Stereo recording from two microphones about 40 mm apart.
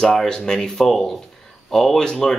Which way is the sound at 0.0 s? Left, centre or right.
Centre.